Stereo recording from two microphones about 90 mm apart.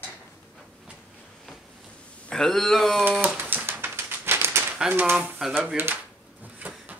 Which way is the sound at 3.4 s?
20° right (ahead or behind).